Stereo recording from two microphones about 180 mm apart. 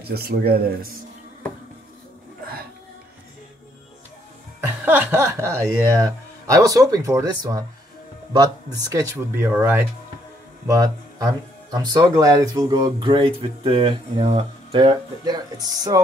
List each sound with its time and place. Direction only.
0.0 s speech: 60° right (ahead or behind)
4.6 s speech: 10° right (ahead or behind)